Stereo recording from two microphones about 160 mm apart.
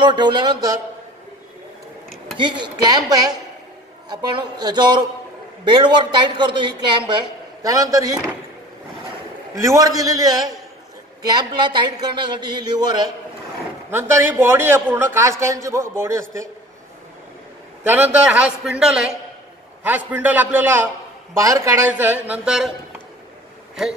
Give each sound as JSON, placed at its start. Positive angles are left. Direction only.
{"t": 0.0, "sound": "a man's voice", "side_deg": -30}
{"t": 2.3, "sound": "a man's voice", "side_deg": -30}
{"t": 9.6, "sound": "a man's voice", "side_deg": -20}
{"t": 11.3, "sound": "a man's voice", "side_deg": -30}
{"t": 13.8, "sound": "a man's voice", "side_deg": -15}
{"t": 17.8, "sound": "a man's voice", "side_deg": -10}